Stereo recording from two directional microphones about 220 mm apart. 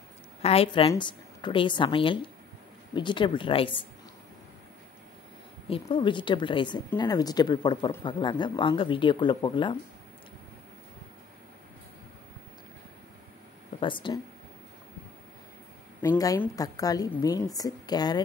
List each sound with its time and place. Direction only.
0.4 s speech: 25° left (ahead or behind)
5.7 s speech: 25° left (ahead or behind)
13.7 s speech: 20° left (ahead or behind)
16.0 s a woman's voice: 15° left (ahead or behind)